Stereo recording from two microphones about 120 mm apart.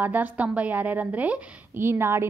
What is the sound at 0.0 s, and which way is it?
A woman's voice, 15° right (ahead or behind).